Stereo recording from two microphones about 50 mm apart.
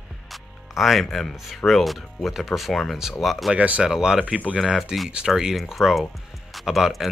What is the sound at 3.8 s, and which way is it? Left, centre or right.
Speech, centre.